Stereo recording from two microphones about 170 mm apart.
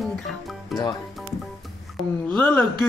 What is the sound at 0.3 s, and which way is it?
Music, centre (ahead or behind).